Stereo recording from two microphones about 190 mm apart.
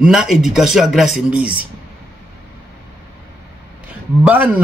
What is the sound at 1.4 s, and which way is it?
Speech, 50° right (ahead or behind).